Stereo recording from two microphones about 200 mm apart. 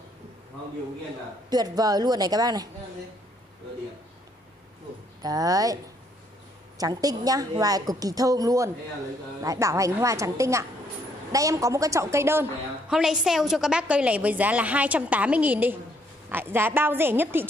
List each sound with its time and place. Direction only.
1.5 s a woman's voice: 20° right (ahead or behind)
5.2 s a woman's voice: 20° right (ahead or behind)
6.8 s a woman's voice: 20° right (ahead or behind)